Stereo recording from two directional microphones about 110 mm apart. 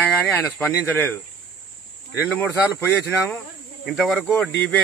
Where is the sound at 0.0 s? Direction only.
15° left (ahead or behind).